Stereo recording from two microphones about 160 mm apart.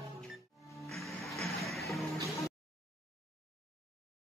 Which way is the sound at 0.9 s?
Centre (ahead or behind).